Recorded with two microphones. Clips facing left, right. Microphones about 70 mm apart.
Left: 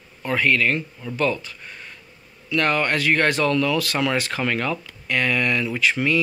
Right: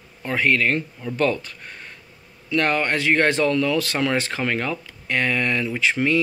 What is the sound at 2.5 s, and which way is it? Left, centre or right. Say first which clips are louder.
Speech: even; right.